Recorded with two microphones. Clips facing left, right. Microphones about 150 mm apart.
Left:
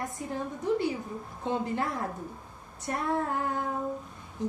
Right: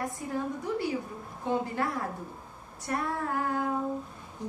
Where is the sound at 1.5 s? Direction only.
20° left (ahead or behind).